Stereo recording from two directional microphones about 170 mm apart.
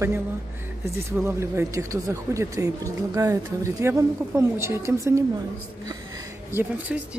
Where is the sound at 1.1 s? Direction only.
15° right (ahead or behind).